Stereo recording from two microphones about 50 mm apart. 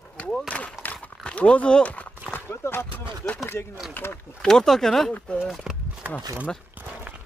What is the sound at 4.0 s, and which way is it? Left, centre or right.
Speech, left.